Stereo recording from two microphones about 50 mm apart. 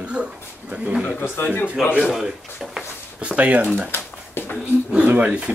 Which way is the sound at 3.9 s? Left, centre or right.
Left.